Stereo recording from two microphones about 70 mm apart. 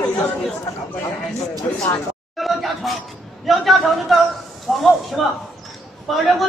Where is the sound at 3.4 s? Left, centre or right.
Centre.